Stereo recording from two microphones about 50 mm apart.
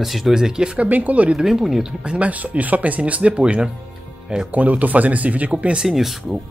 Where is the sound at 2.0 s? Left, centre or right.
Right.